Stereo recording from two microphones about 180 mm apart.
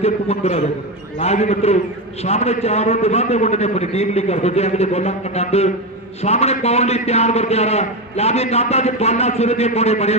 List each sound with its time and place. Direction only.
0.0 s a man's voice: 35° left (ahead or behind)